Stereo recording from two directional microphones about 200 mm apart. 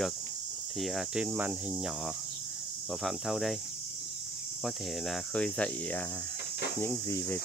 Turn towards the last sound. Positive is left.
turn(degrees=10)  # may be behind; listen again after turning